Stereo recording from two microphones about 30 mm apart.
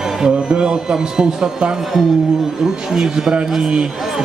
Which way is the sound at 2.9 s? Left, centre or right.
Centre.